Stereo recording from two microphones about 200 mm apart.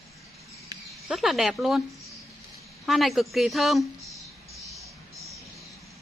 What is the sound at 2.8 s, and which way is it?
A woman's voice, centre (ahead or behind).